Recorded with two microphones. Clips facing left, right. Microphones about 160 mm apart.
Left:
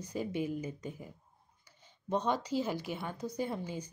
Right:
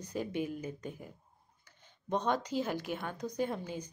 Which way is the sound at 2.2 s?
10° left (ahead or behind).